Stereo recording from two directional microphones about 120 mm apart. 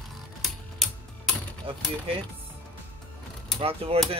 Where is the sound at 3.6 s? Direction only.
55° right (ahead or behind).